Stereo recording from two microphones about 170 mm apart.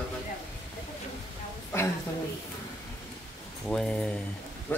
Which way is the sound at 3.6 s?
5° left (ahead or behind).